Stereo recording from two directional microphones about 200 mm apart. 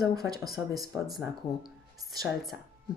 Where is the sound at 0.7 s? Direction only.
Centre (ahead or behind).